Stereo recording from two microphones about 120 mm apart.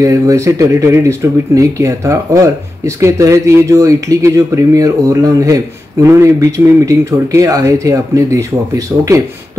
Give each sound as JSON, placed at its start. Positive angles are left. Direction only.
{"t": 0.0, "sound": "speech", "side_deg": -25}